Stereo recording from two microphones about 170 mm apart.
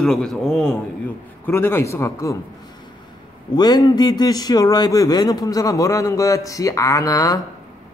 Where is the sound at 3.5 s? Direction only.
25° left (ahead or behind).